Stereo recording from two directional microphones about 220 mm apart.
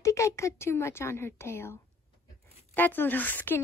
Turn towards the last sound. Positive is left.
turn(degrees=10)  # may be behind; listen again after turning